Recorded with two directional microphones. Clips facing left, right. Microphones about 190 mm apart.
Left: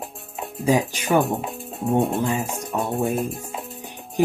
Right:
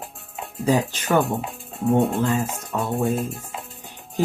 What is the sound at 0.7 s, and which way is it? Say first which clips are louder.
Speech: left 1 dB; 10° left (ahead or behind).